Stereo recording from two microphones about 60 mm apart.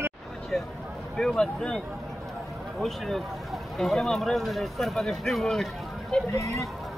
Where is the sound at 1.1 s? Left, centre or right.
Centre.